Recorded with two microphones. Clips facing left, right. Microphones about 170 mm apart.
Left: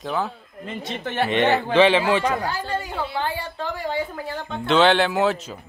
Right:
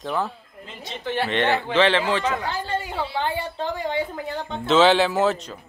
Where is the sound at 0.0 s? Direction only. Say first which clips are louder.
Even; centre (ahead or behind).